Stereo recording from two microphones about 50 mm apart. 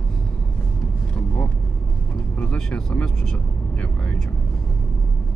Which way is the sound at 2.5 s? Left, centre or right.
Left.